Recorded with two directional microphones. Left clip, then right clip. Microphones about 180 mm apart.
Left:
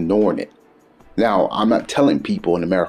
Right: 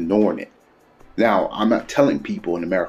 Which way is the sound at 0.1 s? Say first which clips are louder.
Left 2 dB; 30° left (ahead or behind).